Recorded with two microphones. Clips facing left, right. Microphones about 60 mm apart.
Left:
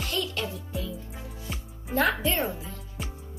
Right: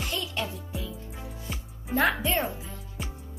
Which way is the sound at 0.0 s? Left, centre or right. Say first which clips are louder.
Left 1 dB; centre.